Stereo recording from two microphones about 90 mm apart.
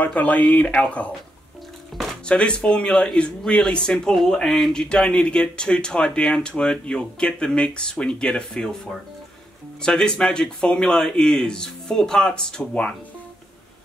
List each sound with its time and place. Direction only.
0.0 s speech: 15° left (ahead or behind)
2.2 s speech: 10° left (ahead or behind)
9.8 s speech: 10° left (ahead or behind)